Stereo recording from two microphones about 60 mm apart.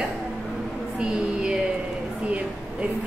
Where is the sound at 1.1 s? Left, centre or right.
Centre.